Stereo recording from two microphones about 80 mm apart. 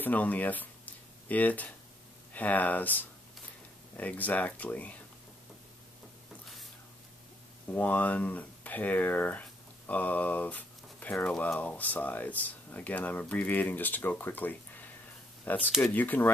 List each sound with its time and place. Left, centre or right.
0.0 s speech: left
7.7 s speech: left